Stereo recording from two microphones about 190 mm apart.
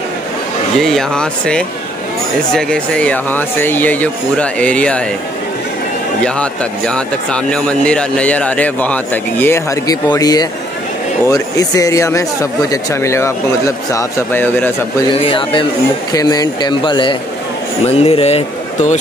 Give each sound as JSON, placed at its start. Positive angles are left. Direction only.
{"t": 0.7, "sound": "speech", "side_deg": 0}
{"t": 6.2, "sound": "speech", "side_deg": 5}
{"t": 15.0, "sound": "speech", "side_deg": 30}